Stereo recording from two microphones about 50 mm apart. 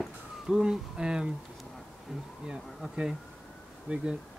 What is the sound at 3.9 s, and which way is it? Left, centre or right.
Speech, right.